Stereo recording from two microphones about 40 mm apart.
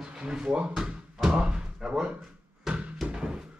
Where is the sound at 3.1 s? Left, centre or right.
Right.